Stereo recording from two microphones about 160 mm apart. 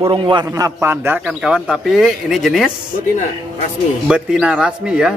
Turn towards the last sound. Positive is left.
turn(degrees=-5)  # may be behind; listen again after turning